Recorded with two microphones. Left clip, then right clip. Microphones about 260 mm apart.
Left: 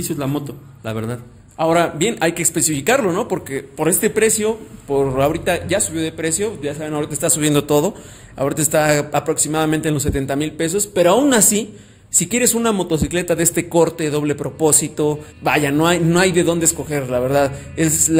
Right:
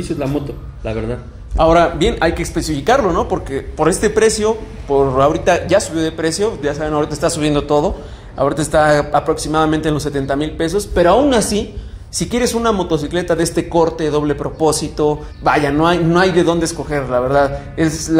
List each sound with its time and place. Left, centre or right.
0.8 s music: left
1.6 s speech: centre
17.8 s music: left